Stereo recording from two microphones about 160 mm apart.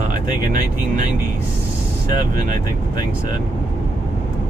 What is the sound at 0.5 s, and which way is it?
Speech, 55° right (ahead or behind).